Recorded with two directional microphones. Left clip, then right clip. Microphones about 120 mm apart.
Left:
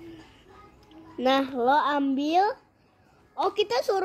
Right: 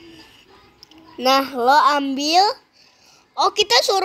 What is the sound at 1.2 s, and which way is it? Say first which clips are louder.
A child's voice: right 6 dB; 15° right (ahead or behind).